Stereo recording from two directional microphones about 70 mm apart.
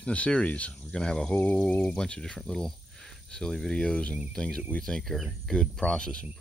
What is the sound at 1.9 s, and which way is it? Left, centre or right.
Speech, centre.